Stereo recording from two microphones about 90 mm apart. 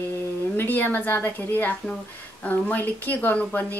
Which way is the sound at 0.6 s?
20° left (ahead or behind).